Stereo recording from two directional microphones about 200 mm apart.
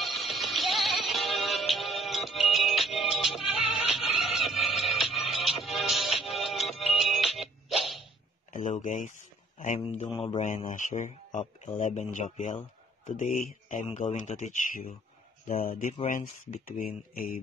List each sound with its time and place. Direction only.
0.0 s music: centre (ahead or behind)
8.5 s speech: 40° left (ahead or behind)